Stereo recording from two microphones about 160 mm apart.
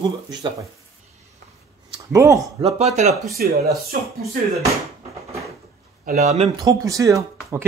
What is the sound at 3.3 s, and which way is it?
Speech, 70° right (ahead or behind).